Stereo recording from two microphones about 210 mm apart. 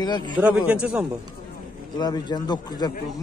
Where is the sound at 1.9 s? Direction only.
20° left (ahead or behind).